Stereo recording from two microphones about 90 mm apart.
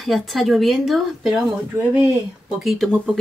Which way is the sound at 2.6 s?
Centre (ahead or behind).